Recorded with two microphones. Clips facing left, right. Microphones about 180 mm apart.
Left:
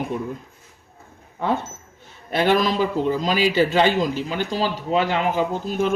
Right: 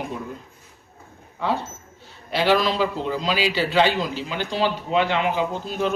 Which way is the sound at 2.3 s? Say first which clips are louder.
Left 1 dB; 45° left (ahead or behind).